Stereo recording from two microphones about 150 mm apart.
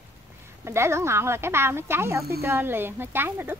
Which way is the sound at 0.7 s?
15° right (ahead or behind).